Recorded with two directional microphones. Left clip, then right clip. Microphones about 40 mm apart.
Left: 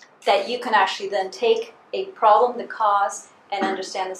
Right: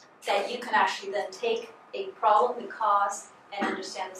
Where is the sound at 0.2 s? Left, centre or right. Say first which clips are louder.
Left 8 dB; left.